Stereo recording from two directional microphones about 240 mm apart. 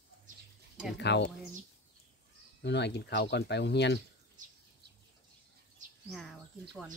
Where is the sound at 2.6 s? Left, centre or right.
Left.